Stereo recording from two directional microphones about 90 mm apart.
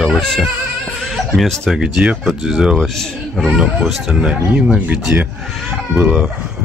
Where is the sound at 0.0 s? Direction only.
Centre (ahead or behind).